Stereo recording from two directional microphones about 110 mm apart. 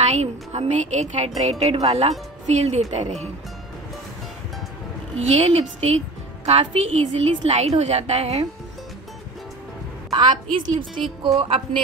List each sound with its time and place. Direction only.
0.0 s a woman's voice: 85° right
5.4 s a woman's voice: 70° right (ahead or behind)
10.1 s a woman's voice: 45° right (ahead or behind)